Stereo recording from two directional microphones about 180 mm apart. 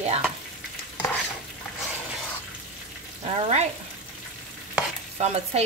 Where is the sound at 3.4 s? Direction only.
35° right (ahead or behind).